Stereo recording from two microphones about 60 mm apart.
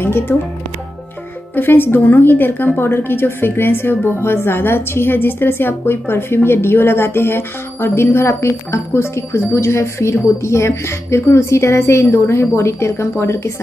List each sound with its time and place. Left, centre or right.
0.0 s music: left
1.5 s a woman's voice: left